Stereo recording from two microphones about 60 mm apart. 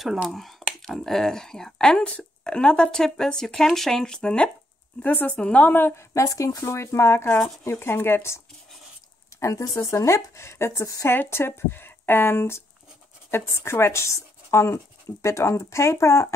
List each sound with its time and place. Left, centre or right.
0.3 s speech: centre
5.0 s speech: left
5.7 s speech: left
6.1 s a woman's voice: left
9.4 s speech: left
11.1 s a woman's voice: left